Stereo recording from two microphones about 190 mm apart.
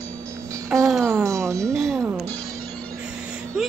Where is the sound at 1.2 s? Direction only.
15° right (ahead or behind).